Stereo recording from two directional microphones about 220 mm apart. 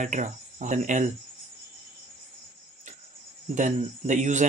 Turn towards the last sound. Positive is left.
turn(degrees=-35)  # may be behind; listen again after turning